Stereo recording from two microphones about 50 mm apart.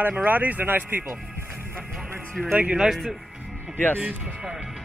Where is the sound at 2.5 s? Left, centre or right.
Right.